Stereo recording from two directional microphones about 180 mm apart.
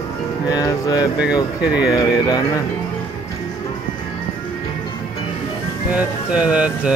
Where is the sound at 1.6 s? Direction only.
5° right (ahead or behind).